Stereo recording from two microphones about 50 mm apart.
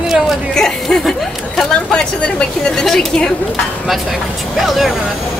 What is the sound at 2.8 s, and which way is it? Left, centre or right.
Speech, centre.